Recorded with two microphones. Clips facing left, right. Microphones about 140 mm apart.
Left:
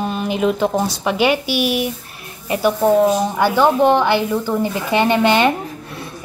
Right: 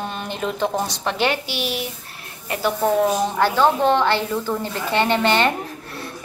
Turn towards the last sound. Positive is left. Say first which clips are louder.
# left 4 dB
turn(degrees=15)  # may be behind; listen again after turning